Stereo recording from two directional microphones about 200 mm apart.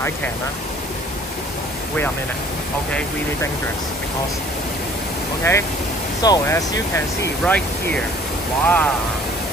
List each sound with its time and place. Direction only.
5.5 s speech: 15° left (ahead or behind)